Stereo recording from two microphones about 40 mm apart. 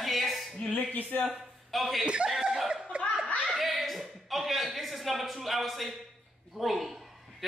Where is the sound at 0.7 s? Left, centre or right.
Left.